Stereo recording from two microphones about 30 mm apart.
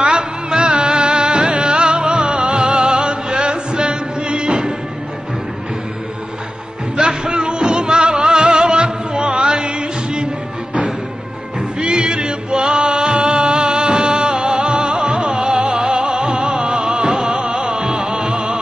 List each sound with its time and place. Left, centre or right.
0.5 s music: right
7.0 s music: right
11.8 s music: right